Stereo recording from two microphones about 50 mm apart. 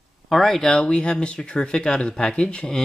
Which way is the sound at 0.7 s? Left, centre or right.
Centre.